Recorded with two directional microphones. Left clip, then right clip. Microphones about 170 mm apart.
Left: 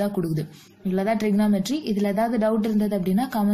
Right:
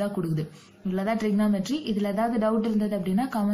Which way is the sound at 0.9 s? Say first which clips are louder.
Left 4 dB; 40° left (ahead or behind).